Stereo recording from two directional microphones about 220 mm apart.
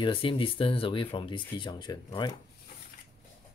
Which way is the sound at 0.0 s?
25° left (ahead or behind).